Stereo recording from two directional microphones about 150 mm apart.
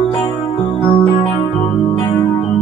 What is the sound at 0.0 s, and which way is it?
Music, 30° left (ahead or behind).